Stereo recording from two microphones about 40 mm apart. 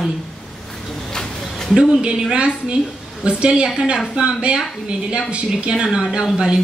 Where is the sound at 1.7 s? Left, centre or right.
Centre.